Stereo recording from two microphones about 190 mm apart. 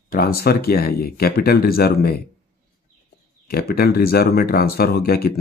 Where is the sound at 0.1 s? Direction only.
55° left (ahead or behind).